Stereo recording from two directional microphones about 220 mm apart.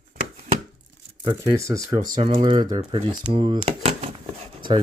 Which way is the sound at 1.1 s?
15° right (ahead or behind).